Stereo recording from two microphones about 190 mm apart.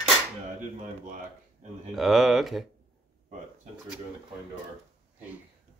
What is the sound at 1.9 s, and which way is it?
Speech, centre (ahead or behind).